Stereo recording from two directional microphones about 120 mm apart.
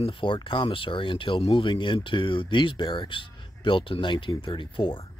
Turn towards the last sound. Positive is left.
turn(degrees=45)  # may be behind; listen again after turning